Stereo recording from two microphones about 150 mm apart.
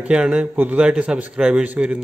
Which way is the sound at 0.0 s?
5° right (ahead or behind).